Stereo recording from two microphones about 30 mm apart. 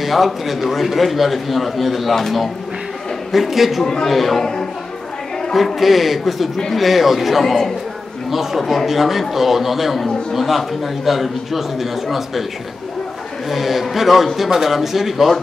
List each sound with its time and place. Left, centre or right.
0.0 s a man's voice: centre
3.8 s a man's voice: left
4.1 s a man's voice: centre
5.8 s a man's voice: centre
13.5 s a man's voice: centre